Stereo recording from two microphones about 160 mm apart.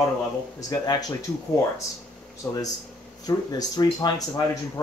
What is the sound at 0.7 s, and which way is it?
Speech, 25° left (ahead or behind).